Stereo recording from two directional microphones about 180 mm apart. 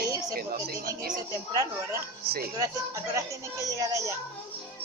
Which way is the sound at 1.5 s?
15° right (ahead or behind).